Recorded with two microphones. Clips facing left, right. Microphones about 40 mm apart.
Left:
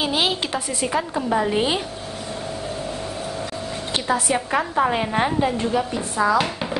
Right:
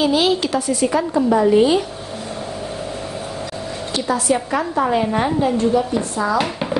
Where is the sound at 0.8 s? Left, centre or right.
Centre.